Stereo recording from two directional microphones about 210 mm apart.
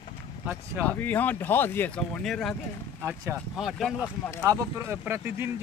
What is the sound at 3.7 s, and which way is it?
Speech, centre (ahead or behind).